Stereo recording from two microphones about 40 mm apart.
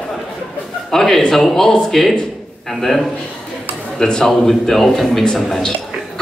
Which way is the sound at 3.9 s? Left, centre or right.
Centre.